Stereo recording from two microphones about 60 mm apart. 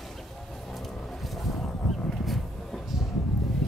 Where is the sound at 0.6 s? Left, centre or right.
Centre.